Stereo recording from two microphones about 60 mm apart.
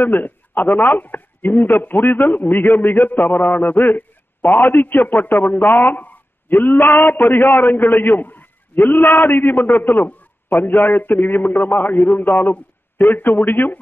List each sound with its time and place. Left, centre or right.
0.0 s a man's voice: left